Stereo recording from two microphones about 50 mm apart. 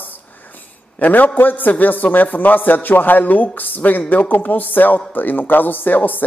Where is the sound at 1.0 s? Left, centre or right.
Left.